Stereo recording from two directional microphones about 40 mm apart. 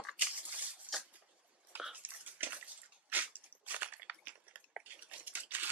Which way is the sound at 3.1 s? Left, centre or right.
Right.